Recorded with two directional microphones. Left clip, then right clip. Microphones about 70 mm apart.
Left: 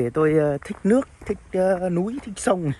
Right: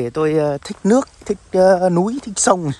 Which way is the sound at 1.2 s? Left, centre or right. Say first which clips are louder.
Right 11 dB; right.